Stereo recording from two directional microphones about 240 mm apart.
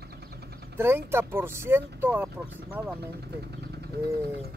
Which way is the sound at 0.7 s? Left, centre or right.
Centre.